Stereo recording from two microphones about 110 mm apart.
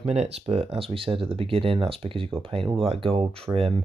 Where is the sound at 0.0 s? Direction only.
80° right.